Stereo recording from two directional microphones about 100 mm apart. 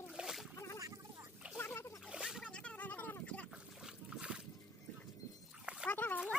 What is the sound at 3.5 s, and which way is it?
Boat, 10° right (ahead or behind).